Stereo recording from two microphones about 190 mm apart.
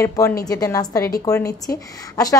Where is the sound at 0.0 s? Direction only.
15° left (ahead or behind).